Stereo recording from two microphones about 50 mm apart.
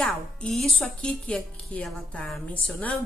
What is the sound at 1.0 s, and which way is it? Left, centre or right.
Speech, left.